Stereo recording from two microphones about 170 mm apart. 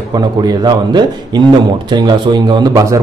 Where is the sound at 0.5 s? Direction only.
25° right (ahead or behind).